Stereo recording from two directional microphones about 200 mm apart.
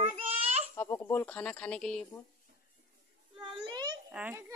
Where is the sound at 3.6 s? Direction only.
20° right (ahead or behind).